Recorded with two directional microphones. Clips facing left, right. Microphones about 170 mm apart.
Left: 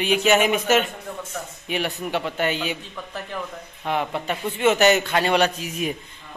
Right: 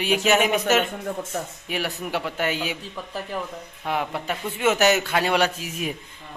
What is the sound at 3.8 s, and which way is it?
A man's voice, 5° right (ahead or behind).